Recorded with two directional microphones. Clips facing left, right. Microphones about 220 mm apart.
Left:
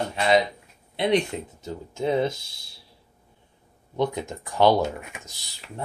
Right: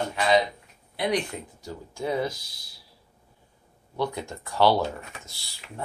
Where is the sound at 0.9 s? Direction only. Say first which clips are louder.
Left 4 dB; 25° left (ahead or behind).